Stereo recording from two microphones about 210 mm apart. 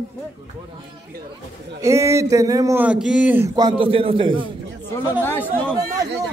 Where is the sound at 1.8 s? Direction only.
15° right (ahead or behind).